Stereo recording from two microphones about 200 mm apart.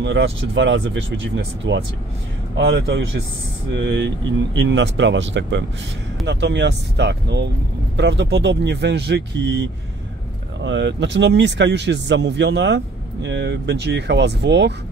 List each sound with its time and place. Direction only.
0.0 s speech: 70° right (ahead or behind)